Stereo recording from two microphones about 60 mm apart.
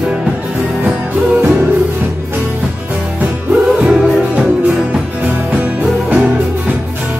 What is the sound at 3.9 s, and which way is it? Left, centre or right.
Music, centre.